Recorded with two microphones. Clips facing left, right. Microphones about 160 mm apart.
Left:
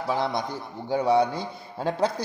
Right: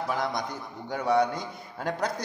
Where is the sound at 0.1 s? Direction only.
25° left (ahead or behind).